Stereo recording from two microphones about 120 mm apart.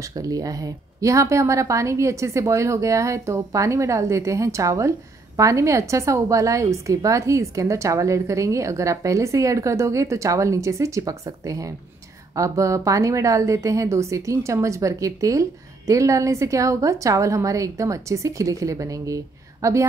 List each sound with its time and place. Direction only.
0.1 s a woman's voice: 30° right (ahead or behind)